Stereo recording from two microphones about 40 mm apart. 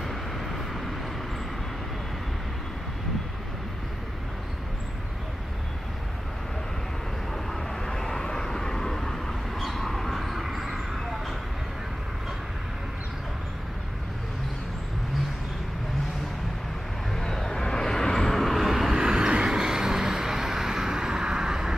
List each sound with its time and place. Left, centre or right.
0.0 s vehicle: centre
7.8 s vehicle: centre
17.1 s vehicle: centre
18.3 s vehicle: centre